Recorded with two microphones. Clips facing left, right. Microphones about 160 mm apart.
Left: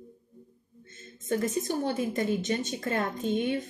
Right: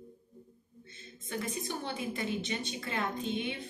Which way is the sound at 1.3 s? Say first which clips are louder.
Left 9 dB; 45° left (ahead or behind).